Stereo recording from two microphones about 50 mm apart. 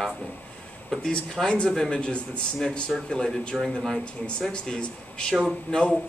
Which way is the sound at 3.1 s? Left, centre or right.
Centre.